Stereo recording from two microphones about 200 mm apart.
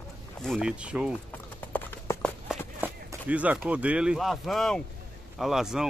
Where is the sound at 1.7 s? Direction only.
10° left (ahead or behind).